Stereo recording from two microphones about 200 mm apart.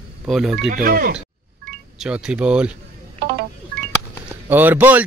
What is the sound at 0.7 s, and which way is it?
Speech, 45° right (ahead or behind).